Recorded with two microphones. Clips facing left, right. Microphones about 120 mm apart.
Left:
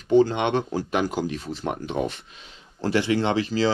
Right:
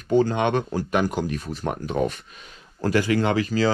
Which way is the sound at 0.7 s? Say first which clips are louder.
Right 1 dB; 15° left (ahead or behind).